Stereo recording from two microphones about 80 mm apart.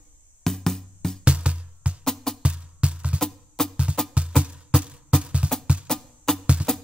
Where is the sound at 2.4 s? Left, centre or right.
Centre.